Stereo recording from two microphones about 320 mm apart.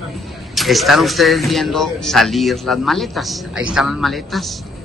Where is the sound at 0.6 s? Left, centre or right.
Centre.